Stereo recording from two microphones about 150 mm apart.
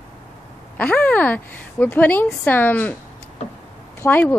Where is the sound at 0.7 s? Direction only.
10° left (ahead or behind).